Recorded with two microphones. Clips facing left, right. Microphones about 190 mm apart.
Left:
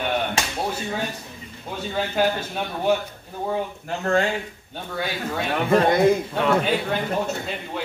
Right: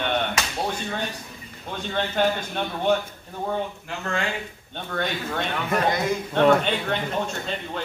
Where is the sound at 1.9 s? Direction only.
5° left (ahead or behind).